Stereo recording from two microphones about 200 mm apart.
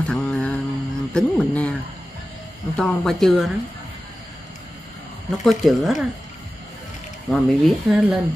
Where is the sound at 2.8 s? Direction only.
Centre (ahead or behind).